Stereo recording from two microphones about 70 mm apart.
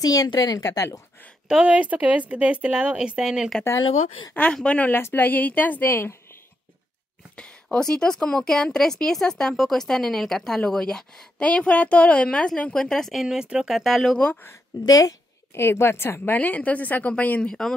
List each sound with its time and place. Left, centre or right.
0.0 s a woman's voice: left
0.6 s a woman's voice: left
1.5 s a woman's voice: centre
4.3 s a woman's voice: centre
7.3 s speech: centre
14.9 s a woman's voice: left
15.5 s a woman's voice: left
16.3 s a woman's voice: left
17.4 s speech: centre